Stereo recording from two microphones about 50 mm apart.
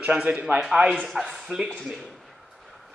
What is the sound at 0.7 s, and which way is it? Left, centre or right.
A man's voice, centre.